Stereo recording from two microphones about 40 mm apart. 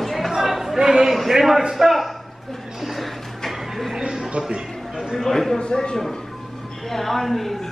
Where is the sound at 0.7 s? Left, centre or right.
Centre.